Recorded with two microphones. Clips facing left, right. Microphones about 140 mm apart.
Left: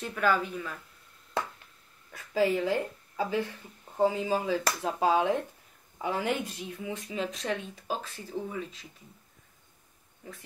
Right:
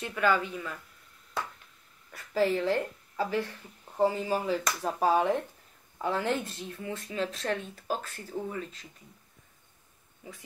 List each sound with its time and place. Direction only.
0.0 s speech: centre (ahead or behind)
2.1 s speech: 10° left (ahead or behind)
10.2 s speech: 10° right (ahead or behind)